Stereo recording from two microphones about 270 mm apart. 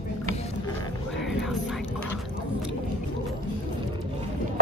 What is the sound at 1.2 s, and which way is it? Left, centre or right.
Whispering, centre.